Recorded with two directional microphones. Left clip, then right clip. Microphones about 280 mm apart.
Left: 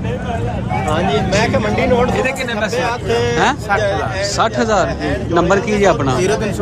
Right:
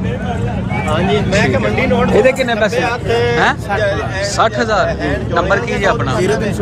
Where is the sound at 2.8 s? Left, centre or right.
Left.